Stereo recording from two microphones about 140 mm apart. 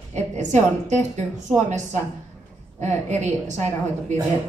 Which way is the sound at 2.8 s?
55° right (ahead or behind).